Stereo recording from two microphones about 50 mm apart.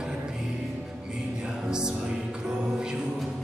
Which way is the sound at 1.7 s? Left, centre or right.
Centre.